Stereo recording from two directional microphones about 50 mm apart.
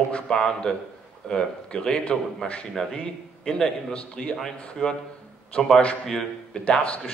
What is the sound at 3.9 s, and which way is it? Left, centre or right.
A man's voice, left.